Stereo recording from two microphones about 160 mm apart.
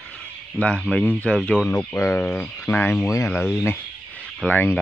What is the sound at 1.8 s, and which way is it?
Speech, 15° left (ahead or behind).